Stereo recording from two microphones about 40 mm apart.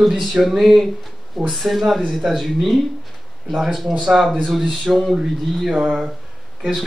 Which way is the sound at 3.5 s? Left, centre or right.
Centre.